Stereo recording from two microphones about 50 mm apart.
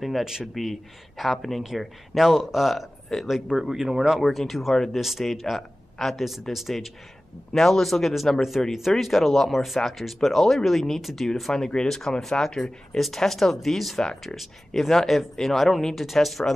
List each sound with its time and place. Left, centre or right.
0.2 s speech: centre
0.6 s speech: centre
4.2 s speech: centre